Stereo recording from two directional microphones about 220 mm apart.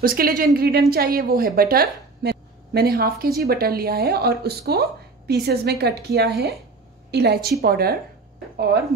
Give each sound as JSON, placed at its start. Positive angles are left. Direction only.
{"t": 0.0, "sound": "a woman's voice", "side_deg": -40}